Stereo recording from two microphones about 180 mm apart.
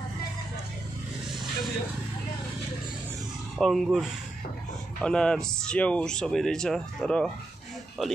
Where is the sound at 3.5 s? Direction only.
Centre (ahead or behind).